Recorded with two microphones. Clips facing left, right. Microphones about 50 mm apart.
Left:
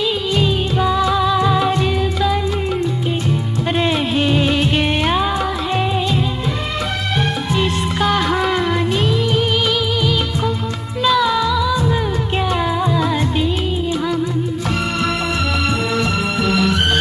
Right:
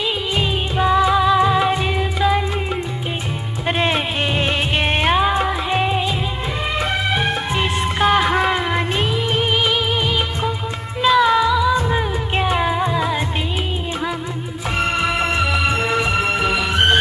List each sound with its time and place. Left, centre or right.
0.4 s music: right
3.8 s music: right
7.5 s music: right
11.1 s music: centre
15.9 s music: centre